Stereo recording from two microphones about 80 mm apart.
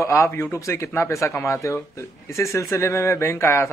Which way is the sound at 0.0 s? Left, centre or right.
Left.